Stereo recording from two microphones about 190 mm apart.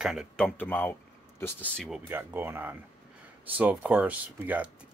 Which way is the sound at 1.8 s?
5° right (ahead or behind).